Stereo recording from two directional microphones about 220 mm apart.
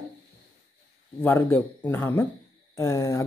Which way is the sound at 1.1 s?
10° left (ahead or behind).